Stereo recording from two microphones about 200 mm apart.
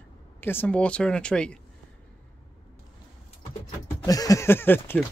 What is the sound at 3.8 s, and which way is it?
Speech, 15° left (ahead or behind).